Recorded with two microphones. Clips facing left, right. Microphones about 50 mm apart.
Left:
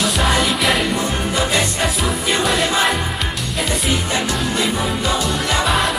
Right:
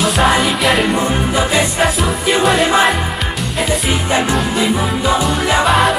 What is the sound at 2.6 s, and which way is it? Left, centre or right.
Music, centre.